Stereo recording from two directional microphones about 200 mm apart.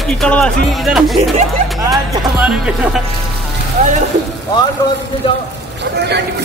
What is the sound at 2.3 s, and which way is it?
Speech, 5° right (ahead or behind).